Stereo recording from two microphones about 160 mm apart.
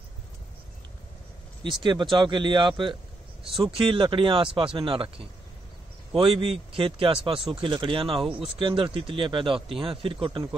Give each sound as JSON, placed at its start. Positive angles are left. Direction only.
{"t": 1.6, "sound": "speech", "side_deg": -30}
{"t": 3.4, "sound": "speech", "side_deg": 0}
{"t": 3.7, "sound": "speech", "side_deg": -35}